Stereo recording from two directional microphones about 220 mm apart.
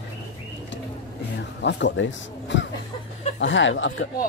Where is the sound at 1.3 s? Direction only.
55° left (ahead or behind).